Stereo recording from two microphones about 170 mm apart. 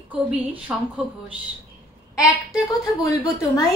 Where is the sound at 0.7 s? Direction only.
10° right (ahead or behind).